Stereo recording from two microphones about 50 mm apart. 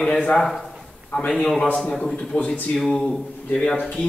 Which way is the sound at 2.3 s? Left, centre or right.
Left.